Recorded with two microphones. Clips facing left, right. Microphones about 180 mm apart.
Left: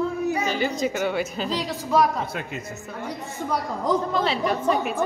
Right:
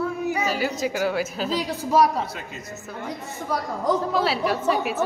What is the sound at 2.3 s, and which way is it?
Speech, 55° left (ahead or behind).